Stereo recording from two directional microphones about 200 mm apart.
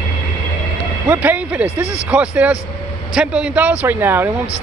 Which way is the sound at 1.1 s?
10° right (ahead or behind).